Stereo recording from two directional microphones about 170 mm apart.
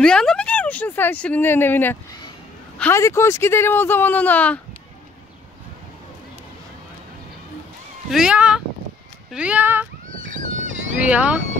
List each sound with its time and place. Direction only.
0.0 s speech: 5° left (ahead or behind)
8.1 s speech: 5° right (ahead or behind)
10.1 s neigh: 50° right (ahead or behind)
11.0 s speech: 5° right (ahead or behind)